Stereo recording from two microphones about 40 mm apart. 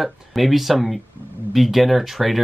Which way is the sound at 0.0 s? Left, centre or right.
Centre.